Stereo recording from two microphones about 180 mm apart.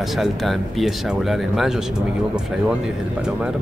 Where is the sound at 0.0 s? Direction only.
Centre (ahead or behind).